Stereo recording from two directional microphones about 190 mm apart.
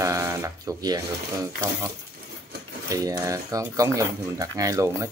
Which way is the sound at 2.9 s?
20° right (ahead or behind).